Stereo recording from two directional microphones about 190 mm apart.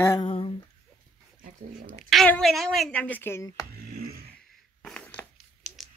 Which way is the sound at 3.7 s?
55° right (ahead or behind).